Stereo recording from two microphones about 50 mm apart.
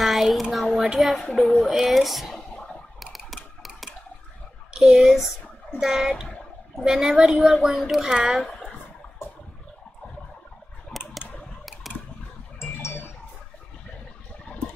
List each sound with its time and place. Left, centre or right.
0.0 s a sound: centre
0.9 s speech: centre
2.5 s typing: centre
4.8 s speech: centre
10.9 s typing: centre
12.5 s a sound: left